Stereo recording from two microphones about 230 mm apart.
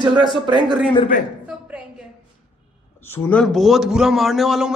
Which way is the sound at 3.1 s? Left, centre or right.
Centre.